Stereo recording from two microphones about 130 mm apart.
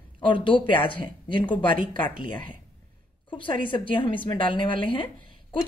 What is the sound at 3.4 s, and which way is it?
A woman's voice, 40° left (ahead or behind).